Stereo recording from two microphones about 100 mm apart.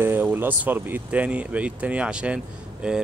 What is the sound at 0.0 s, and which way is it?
Speech, 20° right (ahead or behind).